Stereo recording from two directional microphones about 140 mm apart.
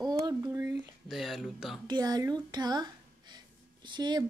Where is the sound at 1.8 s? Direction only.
30° right (ahead or behind).